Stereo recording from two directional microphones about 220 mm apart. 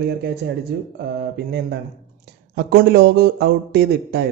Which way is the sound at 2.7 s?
50° right (ahead or behind).